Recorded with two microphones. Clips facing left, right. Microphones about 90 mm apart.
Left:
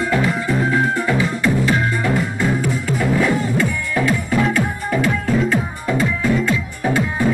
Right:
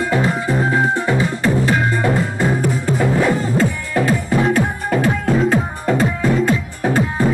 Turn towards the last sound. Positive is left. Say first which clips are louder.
# right 2 dB
turn(degrees=-35)  # may be behind; listen again after turning